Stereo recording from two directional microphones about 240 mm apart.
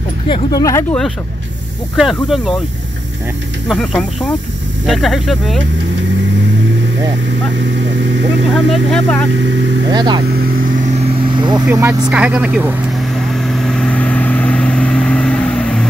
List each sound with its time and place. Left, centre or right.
0.3 s speech: centre
2.0 s speech: centre
3.6 s speech: centre
8.5 s speech: centre
9.8 s speech: centre
11.3 s vehicle: centre
11.6 s speech: centre
13.3 s vehicle: centre